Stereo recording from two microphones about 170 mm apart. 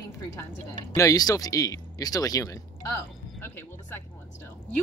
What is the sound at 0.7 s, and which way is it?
Speech, 20° left (ahead or behind).